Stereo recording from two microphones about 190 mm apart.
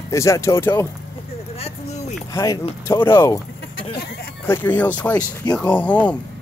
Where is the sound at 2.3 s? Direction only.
15° left (ahead or behind).